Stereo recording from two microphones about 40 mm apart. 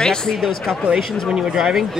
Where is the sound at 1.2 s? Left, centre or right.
Centre.